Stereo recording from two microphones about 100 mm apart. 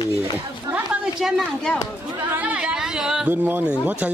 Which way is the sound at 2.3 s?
15° right (ahead or behind).